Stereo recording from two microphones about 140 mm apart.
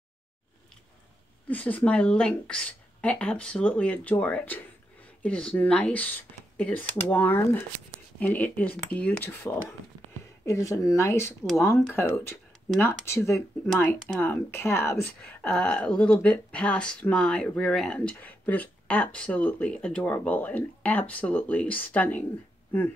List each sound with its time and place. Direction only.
1.5 s speech: 10° left (ahead or behind)
15.4 s speech: 5° left (ahead or behind)